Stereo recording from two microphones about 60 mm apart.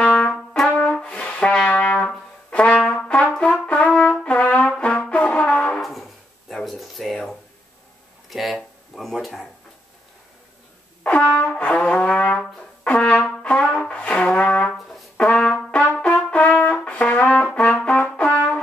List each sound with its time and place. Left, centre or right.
0.0 s trumpet: centre
0.7 s brass instrument: left
5.8 s brass instrument: centre
6.5 s a sound: centre
11.1 s brass instrument: left
15.7 s trumpet: left
16.3 s brass instrument: left